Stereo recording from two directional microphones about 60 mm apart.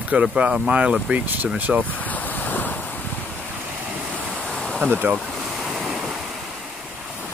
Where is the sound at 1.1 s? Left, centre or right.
Right.